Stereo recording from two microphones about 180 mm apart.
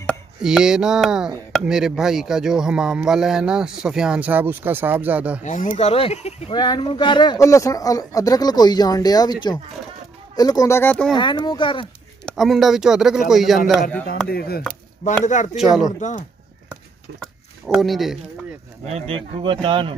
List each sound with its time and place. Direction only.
0.4 s speech: 5° right (ahead or behind)
5.4 s a man's voice: 45° left (ahead or behind); by 11.1 s 5° left (ahead or behind)
11.1 s a man's voice: 25° left (ahead or behind)
12.3 s speech: centre (ahead or behind)
14.2 s chop: 60° left (ahead or behind)
15.0 s speech: 35° left (ahead or behind)
15.5 s speech: centre (ahead or behind)
16.0 s speech: 45° left (ahead or behind)
17.2 s speech: centre (ahead or behind)
18.9 s speech: 35° right (ahead or behind)